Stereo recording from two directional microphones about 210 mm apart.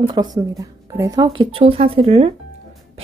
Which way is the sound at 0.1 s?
20° right (ahead or behind).